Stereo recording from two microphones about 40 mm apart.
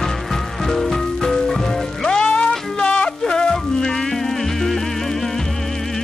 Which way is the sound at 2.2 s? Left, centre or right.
Left.